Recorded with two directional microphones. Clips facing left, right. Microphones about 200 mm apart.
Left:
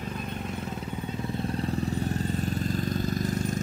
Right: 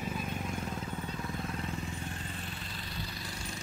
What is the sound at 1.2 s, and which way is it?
Vehicle, 30° left (ahead or behind).